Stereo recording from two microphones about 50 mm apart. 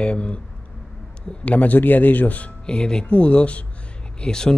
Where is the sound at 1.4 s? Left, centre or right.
Left.